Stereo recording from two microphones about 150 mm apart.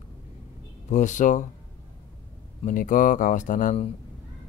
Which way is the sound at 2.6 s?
65° left (ahead or behind).